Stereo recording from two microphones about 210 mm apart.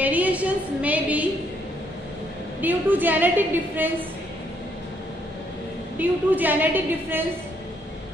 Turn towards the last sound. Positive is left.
turn(degrees=-10)  # may be behind; listen again after turning